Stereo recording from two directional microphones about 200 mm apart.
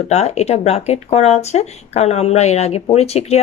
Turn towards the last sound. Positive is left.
turn(degrees=30)  # may be behind; listen again after turning